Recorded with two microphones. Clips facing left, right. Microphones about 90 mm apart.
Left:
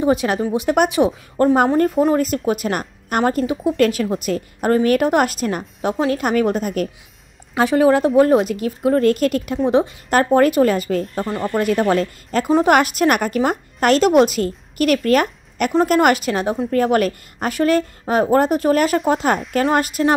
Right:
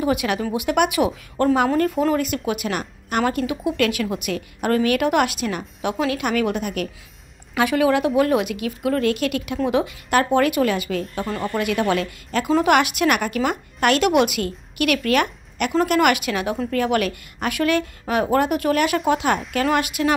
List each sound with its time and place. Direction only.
0.0 s a woman's voice: 30° left (ahead or behind)
11.2 s speech: 15° left (ahead or behind)
11.5 s a woman's voice: 35° left (ahead or behind)